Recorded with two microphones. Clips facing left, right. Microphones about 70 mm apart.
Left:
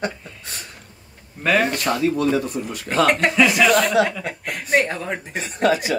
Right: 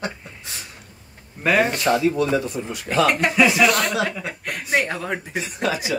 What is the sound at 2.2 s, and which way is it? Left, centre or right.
Speech, left.